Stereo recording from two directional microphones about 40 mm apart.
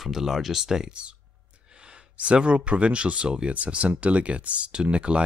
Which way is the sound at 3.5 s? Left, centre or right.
Right.